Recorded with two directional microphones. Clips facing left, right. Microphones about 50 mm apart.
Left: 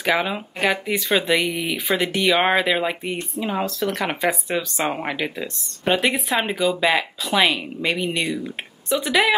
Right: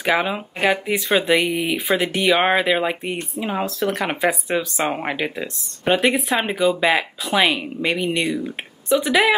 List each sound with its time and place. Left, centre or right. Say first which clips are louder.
0.0 s speech: right 1 dB; centre
4.0 s speech: right 2 dB; centre